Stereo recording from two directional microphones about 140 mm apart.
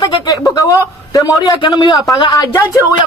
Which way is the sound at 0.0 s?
30° left (ahead or behind).